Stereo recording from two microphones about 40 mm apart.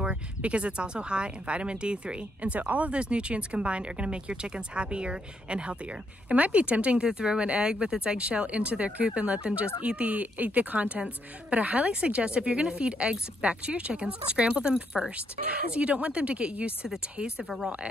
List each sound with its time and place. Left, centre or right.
0.4 s speech: right
8.2 s speech: right